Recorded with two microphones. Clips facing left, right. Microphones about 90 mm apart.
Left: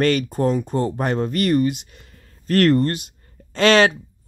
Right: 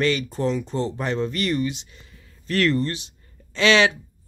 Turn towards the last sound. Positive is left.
turn(degrees=45)  # may be behind; listen again after turning